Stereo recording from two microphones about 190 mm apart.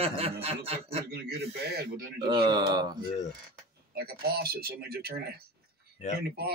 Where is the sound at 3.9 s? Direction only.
55° right (ahead or behind).